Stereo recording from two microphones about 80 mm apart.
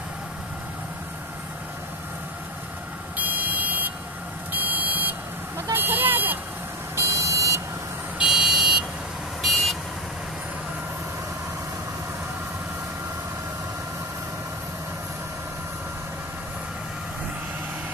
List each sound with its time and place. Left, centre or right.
3.2 s vehicle: right
4.5 s smoke detector: right
5.7 s vehicle: right
7.0 s buzzer: right
8.2 s car alarm: centre
9.4 s vehicle: centre